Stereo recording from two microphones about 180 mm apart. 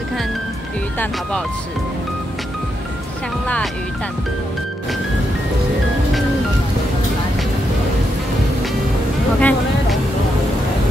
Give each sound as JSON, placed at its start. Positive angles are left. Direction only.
{"t": 9.4, "sound": "music", "side_deg": 5}